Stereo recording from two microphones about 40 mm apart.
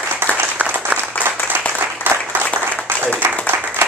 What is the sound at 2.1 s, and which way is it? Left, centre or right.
Applause, right.